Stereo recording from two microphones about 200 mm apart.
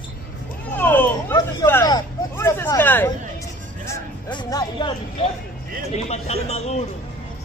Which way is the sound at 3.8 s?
20° left (ahead or behind).